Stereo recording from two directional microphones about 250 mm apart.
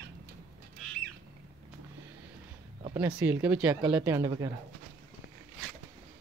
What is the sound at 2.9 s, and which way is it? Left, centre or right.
Speech, centre.